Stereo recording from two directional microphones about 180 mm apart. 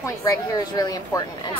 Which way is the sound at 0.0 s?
20° left (ahead or behind).